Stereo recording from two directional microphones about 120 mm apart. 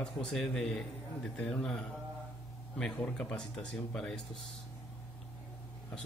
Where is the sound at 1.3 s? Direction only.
10° left (ahead or behind).